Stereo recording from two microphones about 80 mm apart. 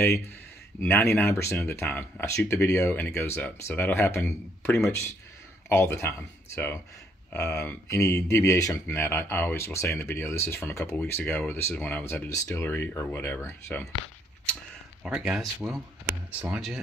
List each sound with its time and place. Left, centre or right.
0.8 s speech: left
8.8 s speech: left
15.0 s speech: centre